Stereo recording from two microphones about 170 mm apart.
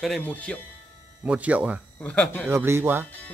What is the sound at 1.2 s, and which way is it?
Speech, 10° right (ahead or behind).